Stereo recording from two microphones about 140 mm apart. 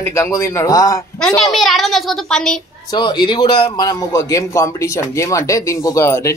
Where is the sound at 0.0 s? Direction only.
20° left (ahead or behind).